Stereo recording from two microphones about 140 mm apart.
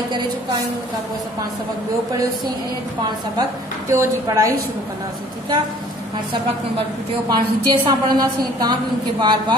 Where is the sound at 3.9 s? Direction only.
20° right (ahead or behind).